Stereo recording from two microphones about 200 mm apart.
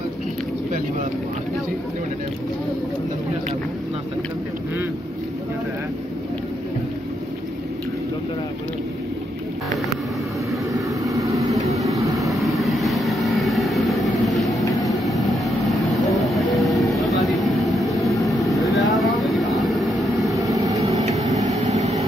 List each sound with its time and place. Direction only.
10.7 s vehicle: 15° right (ahead or behind)
12.2 s vehicle: centre (ahead or behind)
20.3 s vehicle: 15° right (ahead or behind)
21.5 s vehicle: 35° right (ahead or behind)